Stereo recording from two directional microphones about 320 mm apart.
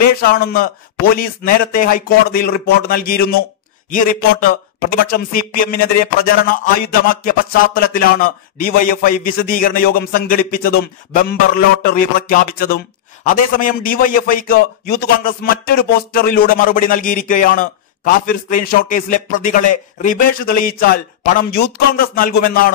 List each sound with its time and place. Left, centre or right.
0.0 s a man's voice: left